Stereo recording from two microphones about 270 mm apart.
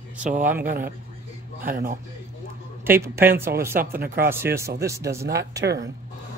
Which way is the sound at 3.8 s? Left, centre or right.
Right.